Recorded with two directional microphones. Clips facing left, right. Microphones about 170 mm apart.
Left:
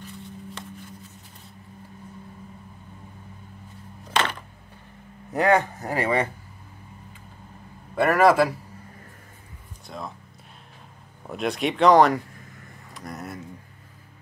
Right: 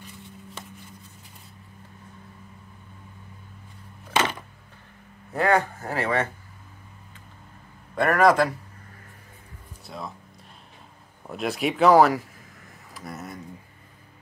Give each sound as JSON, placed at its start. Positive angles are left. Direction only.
{"t": 5.3, "sound": "speech", "side_deg": 15}
{"t": 7.9, "sound": "a man's voice", "side_deg": 5}
{"t": 9.8, "sound": "speech", "side_deg": 0}
{"t": 11.2, "sound": "speech", "side_deg": 0}